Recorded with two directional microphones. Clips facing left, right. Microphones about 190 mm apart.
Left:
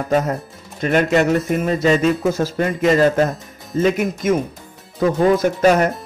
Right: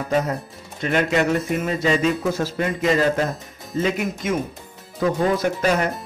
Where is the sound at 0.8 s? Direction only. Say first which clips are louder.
Left 4 dB; 45° left (ahead or behind).